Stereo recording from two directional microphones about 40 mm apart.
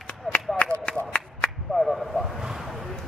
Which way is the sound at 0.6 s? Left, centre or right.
Left.